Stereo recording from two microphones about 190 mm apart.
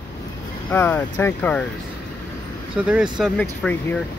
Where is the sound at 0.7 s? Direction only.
10° left (ahead or behind).